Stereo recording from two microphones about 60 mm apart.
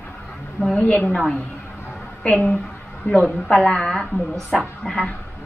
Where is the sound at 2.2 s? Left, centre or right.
Left.